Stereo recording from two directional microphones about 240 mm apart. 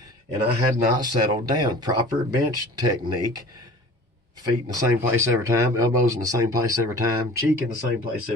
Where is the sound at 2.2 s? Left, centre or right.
Right.